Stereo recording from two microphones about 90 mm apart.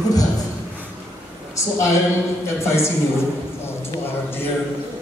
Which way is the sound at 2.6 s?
30° left (ahead or behind).